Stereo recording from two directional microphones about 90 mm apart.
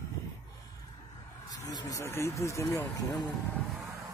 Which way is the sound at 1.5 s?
45° left (ahead or behind).